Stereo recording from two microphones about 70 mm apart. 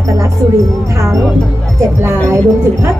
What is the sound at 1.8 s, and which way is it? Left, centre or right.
Speech, right.